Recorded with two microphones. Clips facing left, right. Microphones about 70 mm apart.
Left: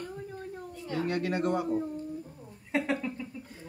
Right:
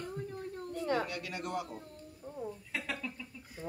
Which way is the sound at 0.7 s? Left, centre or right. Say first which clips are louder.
Right 1 dB; right.